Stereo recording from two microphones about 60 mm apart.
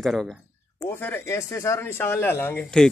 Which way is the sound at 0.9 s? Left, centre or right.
Left.